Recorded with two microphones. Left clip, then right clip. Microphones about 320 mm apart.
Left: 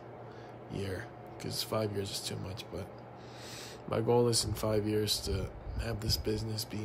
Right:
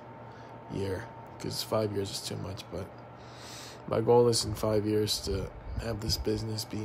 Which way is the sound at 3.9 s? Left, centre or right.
Centre.